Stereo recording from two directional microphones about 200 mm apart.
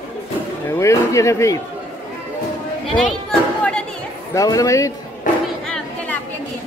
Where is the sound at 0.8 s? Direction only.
15° left (ahead or behind).